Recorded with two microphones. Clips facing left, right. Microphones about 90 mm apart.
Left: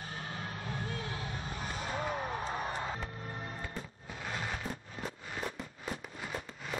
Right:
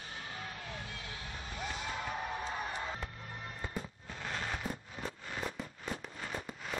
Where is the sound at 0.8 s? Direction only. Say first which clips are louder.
Left 6 dB; 40° left (ahead or behind).